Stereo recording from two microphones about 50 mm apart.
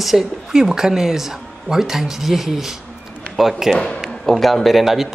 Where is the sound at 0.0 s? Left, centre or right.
Centre.